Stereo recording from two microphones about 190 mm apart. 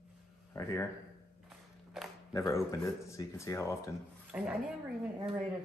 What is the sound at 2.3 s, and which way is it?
Speech, 15° left (ahead or behind).